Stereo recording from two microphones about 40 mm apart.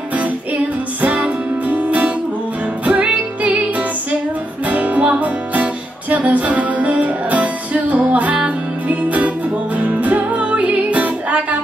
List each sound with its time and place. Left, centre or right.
1.0 s music: right
4.6 s music: right